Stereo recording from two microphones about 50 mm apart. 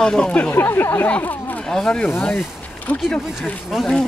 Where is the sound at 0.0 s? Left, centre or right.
Centre.